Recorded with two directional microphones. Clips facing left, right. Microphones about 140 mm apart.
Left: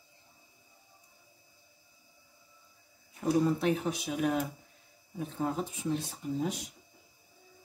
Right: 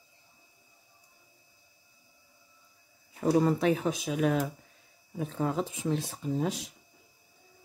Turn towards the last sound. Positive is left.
turn(degrees=-90)